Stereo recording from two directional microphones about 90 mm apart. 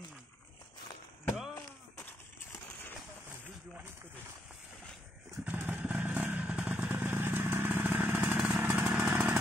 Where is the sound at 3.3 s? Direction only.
25° right (ahead or behind).